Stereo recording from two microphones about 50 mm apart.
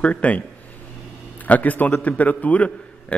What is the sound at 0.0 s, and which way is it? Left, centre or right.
Speech, left.